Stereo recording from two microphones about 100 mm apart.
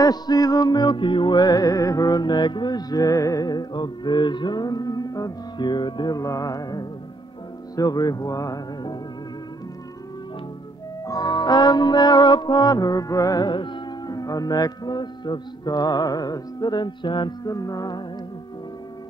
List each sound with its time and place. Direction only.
0.0 s music: 40° left (ahead or behind)
7.7 s speech: 40° left (ahead or behind)
11.1 s music: 40° left (ahead or behind)
17.5 s speech: 35° left (ahead or behind)